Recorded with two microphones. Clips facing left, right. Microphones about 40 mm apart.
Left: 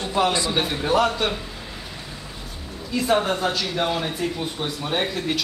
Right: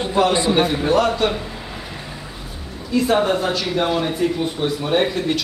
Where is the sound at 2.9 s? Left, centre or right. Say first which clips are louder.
Right 4 dB; centre.